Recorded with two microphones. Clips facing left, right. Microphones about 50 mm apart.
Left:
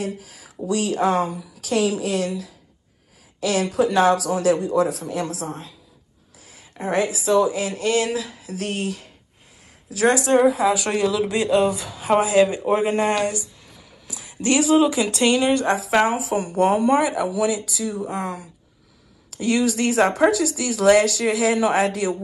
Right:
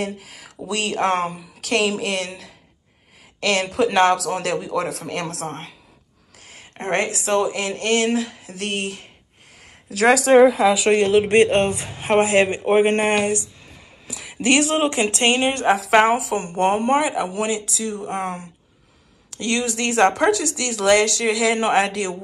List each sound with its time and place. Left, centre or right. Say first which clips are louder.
0.0 s speech: right 1 dB; right
9.8 s speech: right 3 dB; right
15.6 s speech: right 3 dB; right